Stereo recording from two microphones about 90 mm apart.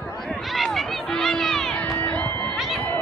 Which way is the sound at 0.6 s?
Centre (ahead or behind).